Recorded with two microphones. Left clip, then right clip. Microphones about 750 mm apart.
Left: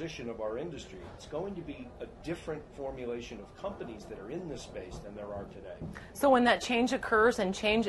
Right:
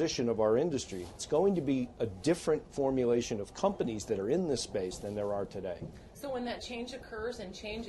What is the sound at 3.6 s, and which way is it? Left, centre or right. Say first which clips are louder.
Speech: right 8 dB; right.